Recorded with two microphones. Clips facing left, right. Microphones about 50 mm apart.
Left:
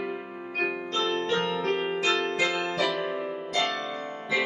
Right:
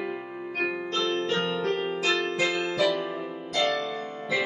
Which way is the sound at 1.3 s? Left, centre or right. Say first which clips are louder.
Even; left.